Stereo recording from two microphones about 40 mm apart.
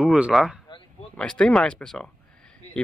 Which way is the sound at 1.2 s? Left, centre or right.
Left.